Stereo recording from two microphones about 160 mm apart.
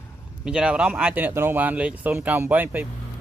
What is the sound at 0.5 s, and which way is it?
Speech, 5° right (ahead or behind).